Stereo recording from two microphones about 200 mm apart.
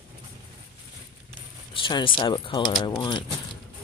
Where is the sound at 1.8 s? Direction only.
25° left (ahead or behind).